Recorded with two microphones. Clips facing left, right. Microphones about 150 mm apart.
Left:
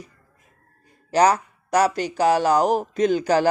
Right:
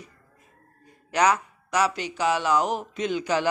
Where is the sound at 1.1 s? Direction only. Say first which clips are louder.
Left 4 dB; 35° left (ahead or behind).